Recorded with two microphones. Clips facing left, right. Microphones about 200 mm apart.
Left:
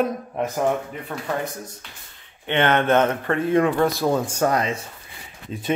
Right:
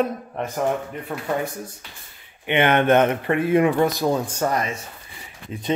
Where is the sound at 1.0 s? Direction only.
5° right (ahead or behind).